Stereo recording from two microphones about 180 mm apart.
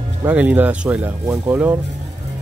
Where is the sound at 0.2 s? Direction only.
10° right (ahead or behind).